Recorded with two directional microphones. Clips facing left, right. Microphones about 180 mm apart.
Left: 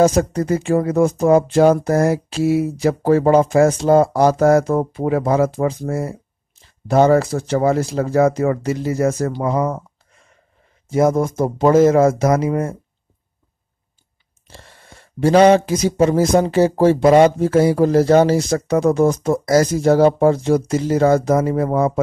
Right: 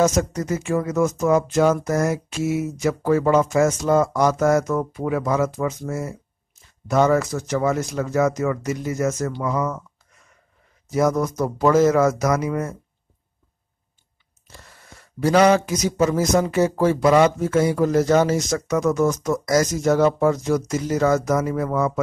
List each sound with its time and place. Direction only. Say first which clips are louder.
0.0 s speech: left 5 dB; 30° left (ahead or behind)
10.9 s speech: left 4 dB; 25° left (ahead or behind)
14.5 s speech: left 3 dB; 30° left (ahead or behind)